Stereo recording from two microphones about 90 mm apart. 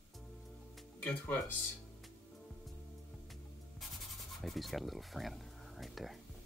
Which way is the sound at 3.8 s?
Centre (ahead or behind).